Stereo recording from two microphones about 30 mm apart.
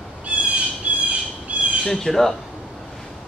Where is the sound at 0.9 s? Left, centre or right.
Right.